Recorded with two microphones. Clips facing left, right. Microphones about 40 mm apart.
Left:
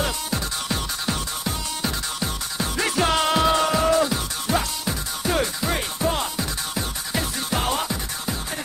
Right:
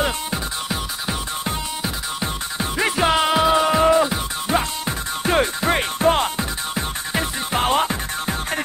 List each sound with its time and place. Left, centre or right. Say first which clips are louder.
2.1 s music: right 2 dB; right
5.2 s music: right 5 dB; right
6.3 s music: right 3 dB; right